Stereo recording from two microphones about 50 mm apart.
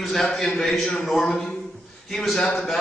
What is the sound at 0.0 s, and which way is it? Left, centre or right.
Speech, centre.